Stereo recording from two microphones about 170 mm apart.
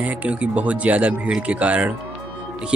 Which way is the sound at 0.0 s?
10° right (ahead or behind).